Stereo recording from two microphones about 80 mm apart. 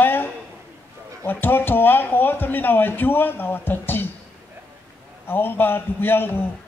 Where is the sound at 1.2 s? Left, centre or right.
Left.